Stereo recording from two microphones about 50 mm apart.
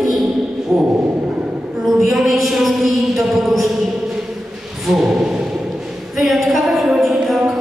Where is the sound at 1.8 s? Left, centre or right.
Centre.